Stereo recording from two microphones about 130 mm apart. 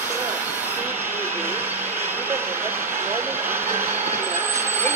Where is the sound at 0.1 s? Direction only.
15° right (ahead or behind).